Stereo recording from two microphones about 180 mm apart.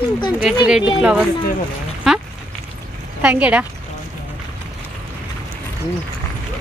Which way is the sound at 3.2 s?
5° right (ahead or behind).